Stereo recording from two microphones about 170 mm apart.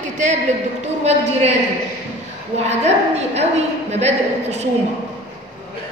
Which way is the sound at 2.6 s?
40° right (ahead or behind).